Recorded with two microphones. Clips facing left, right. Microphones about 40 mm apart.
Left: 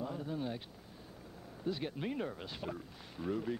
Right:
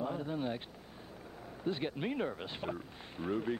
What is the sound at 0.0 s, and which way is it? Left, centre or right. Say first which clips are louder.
Vehicle: right 3 dB; right.